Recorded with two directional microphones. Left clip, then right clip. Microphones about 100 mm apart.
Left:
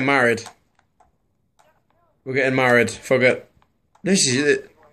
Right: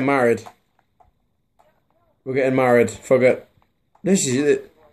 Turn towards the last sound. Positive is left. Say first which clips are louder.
# left 1 dB
turn(degrees=-30)  # may be behind; listen again after turning